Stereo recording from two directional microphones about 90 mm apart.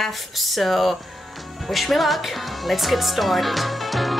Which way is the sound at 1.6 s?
Centre (ahead or behind).